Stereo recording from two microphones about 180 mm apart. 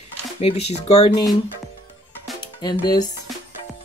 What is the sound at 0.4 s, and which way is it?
Speech, 35° left (ahead or behind).